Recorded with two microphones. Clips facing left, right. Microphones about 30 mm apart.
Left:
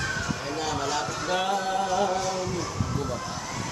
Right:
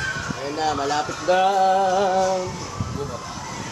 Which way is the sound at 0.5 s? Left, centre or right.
Right.